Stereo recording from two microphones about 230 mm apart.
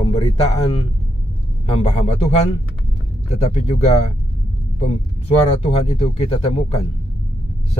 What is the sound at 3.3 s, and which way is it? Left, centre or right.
Speech, left.